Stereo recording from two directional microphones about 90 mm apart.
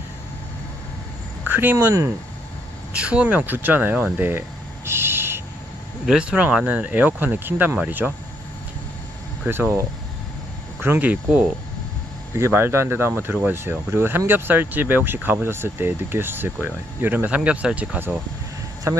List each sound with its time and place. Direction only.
1.5 s speech: 20° right (ahead or behind)
2.9 s speech: 15° right (ahead or behind)
6.0 s speech: 15° right (ahead or behind)
9.5 s speech: 25° right (ahead or behind)
10.8 s speech: 20° right (ahead or behind)
12.4 s speech: 30° right (ahead or behind)
18.9 s a man's voice: 35° right (ahead or behind)